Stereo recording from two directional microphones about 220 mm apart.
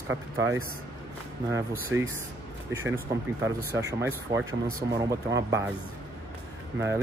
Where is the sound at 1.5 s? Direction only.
10° right (ahead or behind).